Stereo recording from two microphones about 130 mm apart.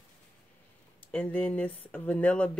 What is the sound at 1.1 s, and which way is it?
Speech, 10° left (ahead or behind).